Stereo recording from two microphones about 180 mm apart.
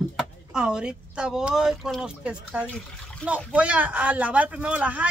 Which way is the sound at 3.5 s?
10° right (ahead or behind).